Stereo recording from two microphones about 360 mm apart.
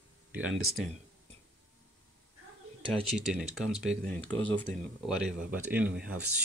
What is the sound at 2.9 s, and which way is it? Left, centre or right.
Speech, centre.